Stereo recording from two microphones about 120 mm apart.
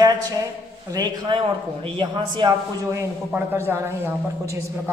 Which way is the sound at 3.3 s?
15° right (ahead or behind).